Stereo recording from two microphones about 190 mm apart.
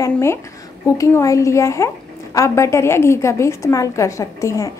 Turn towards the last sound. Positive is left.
turn(degrees=15)  # may be behind; listen again after turning